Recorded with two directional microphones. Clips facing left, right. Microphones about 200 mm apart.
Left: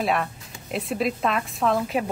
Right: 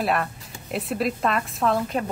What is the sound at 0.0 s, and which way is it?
A woman's voice, centre (ahead or behind).